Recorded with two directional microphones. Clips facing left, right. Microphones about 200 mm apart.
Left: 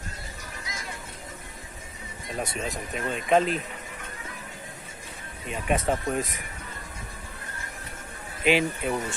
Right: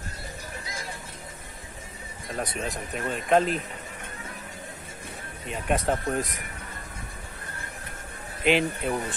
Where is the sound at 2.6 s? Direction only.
Centre (ahead or behind).